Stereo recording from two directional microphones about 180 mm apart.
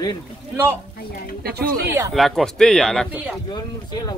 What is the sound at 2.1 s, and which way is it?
Speech, centre (ahead or behind).